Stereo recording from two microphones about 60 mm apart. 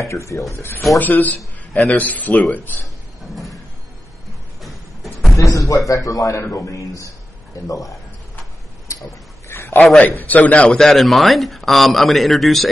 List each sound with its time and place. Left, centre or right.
0.0 s speech: left
0.9 s a man's voice: left
4.6 s a sound: centre
5.4 s a man's voice: left
6.4 s a man's voice: left
8.9 s tick-tock: left
9.5 s a sound: left
10.2 s speech: left
10.7 s speech: centre